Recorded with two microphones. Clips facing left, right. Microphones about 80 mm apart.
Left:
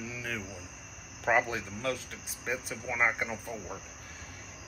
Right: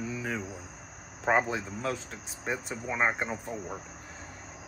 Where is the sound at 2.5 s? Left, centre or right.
Right.